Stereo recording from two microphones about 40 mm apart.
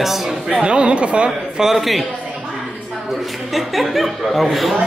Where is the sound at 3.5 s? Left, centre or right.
Centre.